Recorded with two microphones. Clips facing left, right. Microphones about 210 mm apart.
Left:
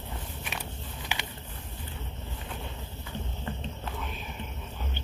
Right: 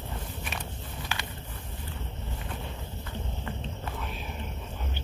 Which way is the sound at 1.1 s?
15° left (ahead or behind).